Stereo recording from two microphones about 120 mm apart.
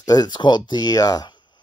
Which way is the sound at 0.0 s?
35° left (ahead or behind).